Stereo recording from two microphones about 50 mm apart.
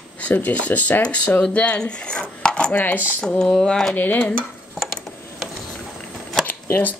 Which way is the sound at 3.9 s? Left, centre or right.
Left.